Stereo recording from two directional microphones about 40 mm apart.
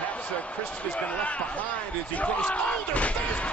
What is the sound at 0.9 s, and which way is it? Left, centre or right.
Speech, left.